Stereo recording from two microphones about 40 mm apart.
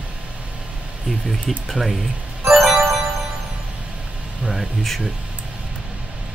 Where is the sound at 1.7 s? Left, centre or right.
Centre.